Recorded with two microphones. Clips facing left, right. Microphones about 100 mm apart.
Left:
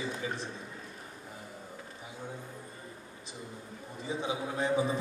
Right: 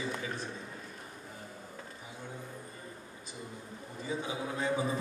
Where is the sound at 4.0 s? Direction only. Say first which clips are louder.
Left 2 dB; 20° left (ahead or behind).